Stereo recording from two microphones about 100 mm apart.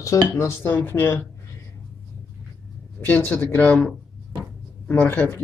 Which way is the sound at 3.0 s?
20° left (ahead or behind).